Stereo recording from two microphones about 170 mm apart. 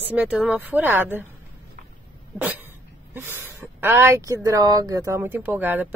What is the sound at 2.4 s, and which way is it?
Dog, 10° right (ahead or behind).